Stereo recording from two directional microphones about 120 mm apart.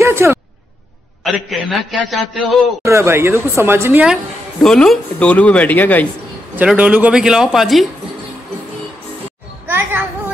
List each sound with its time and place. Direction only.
0.0 s a sound: 20° right (ahead or behind)
1.2 s a man's voice: centre (ahead or behind)
2.8 s speech: 20° right (ahead or behind)
4.0 s a woman's voice: centre (ahead or behind); by 6.0 s 15° left (ahead or behind)
6.7 s a man's voice: 10° right (ahead or behind)
9.7 s children playing: 20° right (ahead or behind)